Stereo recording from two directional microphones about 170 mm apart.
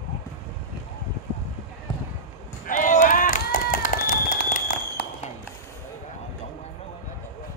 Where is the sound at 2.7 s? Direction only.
50° left (ahead or behind).